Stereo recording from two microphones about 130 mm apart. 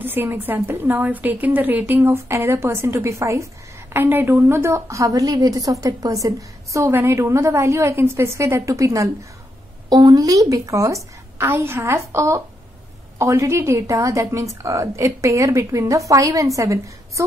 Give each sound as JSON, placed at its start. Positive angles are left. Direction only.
{"t": 0.0, "sound": "a woman's voice", "side_deg": -15}